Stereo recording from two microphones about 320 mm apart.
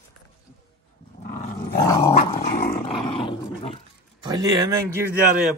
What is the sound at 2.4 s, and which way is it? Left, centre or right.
Dog, left.